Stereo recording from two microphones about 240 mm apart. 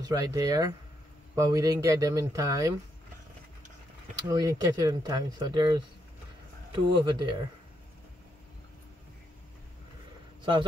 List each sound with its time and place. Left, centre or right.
0.0 s speech: centre
4.3 s a man's voice: centre